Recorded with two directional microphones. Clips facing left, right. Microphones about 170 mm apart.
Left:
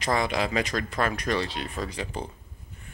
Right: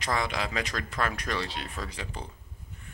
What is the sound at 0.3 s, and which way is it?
Speech, 5° left (ahead or behind).